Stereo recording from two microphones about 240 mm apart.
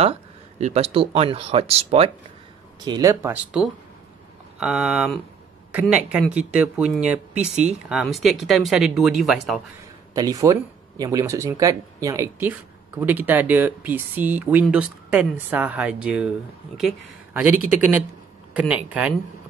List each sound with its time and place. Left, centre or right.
0.0 s speech: right; by 9.6 s centre
10.1 s speech: centre